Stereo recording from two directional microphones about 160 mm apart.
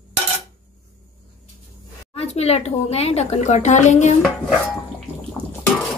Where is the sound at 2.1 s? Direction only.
40° left (ahead or behind).